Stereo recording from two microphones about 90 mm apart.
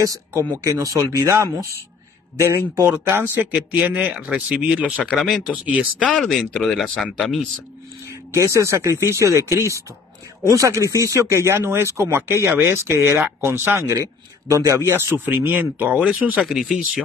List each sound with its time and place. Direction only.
0.0 s speech: 35° right (ahead or behind); by 6.0 s 15° right (ahead or behind)
6.5 s speech: 5° left (ahead or behind)
8.3 s speech: 35° right (ahead or behind); by 16.7 s 5° right (ahead or behind)